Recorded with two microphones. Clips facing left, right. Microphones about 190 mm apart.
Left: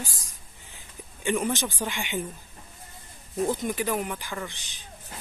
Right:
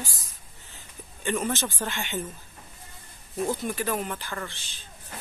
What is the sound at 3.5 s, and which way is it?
Speech, 15° left (ahead or behind).